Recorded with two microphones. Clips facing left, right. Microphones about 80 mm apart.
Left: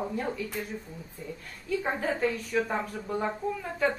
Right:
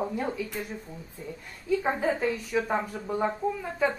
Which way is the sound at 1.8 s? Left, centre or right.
Centre.